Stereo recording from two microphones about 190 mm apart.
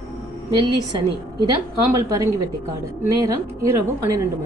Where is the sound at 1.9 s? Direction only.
15° right (ahead or behind).